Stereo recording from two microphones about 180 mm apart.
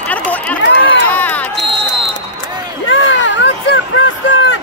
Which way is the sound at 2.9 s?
90° left.